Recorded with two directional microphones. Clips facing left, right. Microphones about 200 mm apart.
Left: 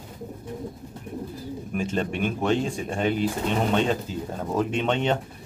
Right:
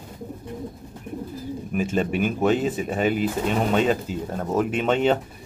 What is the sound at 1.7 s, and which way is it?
Speech, 5° right (ahead or behind).